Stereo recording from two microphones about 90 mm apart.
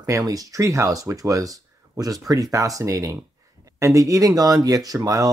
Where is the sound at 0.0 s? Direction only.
40° right (ahead or behind).